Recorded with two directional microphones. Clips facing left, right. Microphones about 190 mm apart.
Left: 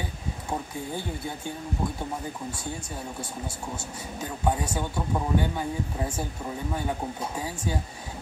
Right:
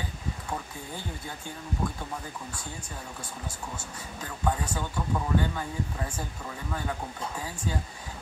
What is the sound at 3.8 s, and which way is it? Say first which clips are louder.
Speech: left 4 dB; 20° left (ahead or behind).